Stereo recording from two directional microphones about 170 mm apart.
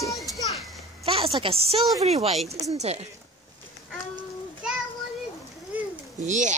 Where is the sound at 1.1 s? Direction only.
30° right (ahead or behind).